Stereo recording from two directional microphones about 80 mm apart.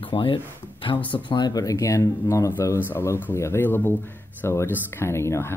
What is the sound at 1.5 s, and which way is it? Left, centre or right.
Speech, left.